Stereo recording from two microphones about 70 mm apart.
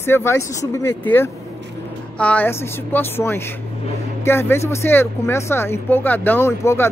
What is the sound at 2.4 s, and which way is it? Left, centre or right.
Speech, left.